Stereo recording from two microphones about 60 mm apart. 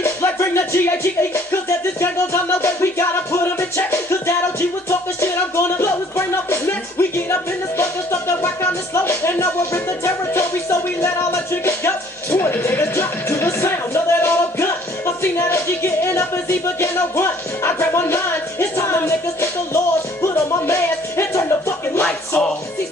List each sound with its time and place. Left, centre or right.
0.0 s music: left